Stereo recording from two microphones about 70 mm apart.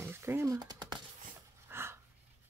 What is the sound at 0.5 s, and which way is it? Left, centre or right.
Speech, right.